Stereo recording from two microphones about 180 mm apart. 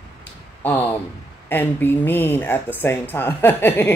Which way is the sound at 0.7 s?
10° left (ahead or behind).